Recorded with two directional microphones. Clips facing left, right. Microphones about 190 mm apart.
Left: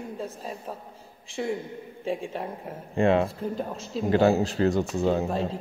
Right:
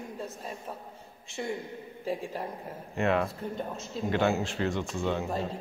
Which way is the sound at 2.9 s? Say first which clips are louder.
Left 5 dB; 30° left (ahead or behind).